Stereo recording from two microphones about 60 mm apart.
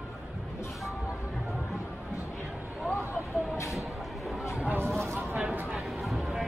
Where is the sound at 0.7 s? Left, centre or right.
Centre.